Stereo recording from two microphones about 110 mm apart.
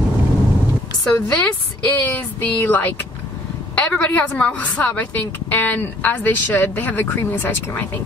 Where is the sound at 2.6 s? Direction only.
15° left (ahead or behind).